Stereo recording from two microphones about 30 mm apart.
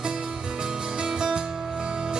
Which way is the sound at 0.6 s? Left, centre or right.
Right.